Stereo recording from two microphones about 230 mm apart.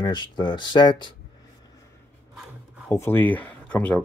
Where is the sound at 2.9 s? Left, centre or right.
Centre.